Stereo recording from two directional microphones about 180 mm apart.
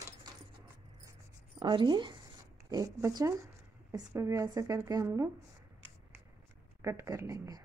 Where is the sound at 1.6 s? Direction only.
25° right (ahead or behind).